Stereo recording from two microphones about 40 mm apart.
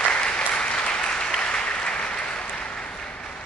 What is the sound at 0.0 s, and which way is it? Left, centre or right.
Applause, left.